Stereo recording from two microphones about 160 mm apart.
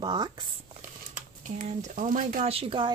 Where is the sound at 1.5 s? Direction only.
50° right (ahead or behind).